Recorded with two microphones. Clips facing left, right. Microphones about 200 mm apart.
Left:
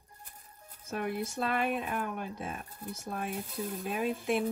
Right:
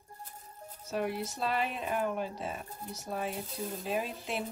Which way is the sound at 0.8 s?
50° left (ahead or behind).